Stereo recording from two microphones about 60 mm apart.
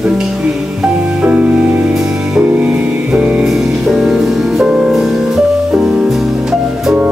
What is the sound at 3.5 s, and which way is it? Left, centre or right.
Music, centre.